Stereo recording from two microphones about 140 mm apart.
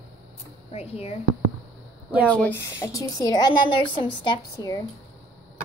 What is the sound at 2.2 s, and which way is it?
Speech, 10° left (ahead or behind).